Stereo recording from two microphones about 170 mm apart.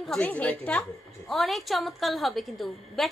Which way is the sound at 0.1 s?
5° left (ahead or behind).